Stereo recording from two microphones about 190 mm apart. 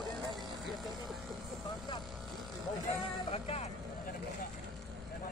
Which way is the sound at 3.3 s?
35° left (ahead or behind).